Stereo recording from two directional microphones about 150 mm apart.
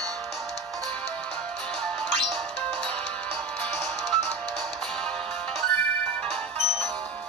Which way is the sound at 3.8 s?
Centre (ahead or behind).